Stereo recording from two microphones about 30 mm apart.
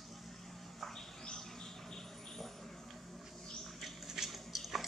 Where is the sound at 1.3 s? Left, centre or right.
Centre.